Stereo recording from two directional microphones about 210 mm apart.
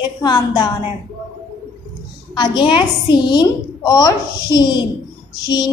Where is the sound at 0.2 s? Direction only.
20° left (ahead or behind).